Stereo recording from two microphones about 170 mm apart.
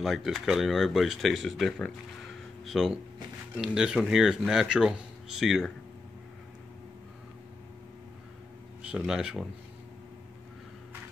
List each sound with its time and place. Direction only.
0.0 s speech: centre (ahead or behind)
8.8 s speech: 5° right (ahead or behind)